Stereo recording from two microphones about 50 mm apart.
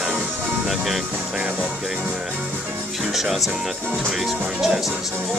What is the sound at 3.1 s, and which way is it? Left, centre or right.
Speech, centre.